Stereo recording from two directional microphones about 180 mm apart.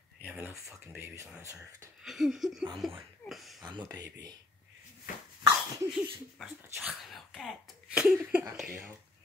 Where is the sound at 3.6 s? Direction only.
20° right (ahead or behind).